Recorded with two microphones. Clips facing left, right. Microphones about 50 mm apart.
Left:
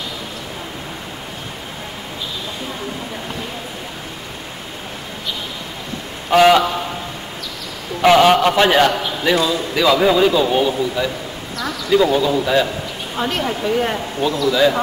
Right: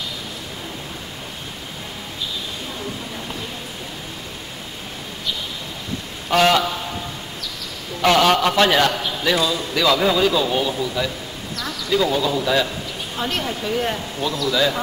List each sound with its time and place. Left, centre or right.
6.3 s a man's voice: centre
8.0 s a man's voice: centre